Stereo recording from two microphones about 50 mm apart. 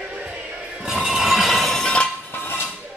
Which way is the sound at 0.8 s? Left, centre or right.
Centre.